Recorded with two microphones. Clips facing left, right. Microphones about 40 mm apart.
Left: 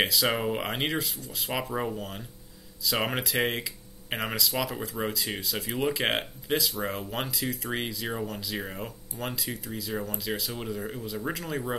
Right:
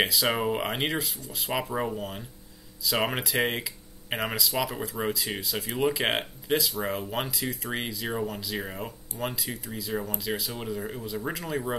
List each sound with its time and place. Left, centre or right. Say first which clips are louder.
0.0 s speech: right 1 dB; centre